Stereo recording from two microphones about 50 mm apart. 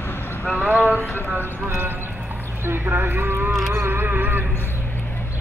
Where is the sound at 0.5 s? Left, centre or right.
Right.